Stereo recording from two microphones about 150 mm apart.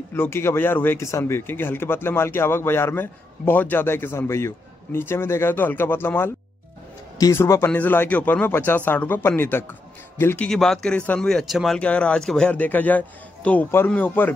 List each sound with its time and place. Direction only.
0.1 s speech: 15° left (ahead or behind)